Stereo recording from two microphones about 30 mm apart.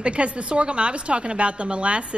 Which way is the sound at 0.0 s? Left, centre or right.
Right.